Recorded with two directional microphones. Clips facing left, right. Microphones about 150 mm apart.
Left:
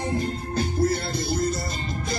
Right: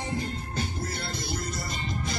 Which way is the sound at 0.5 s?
40° left (ahead or behind).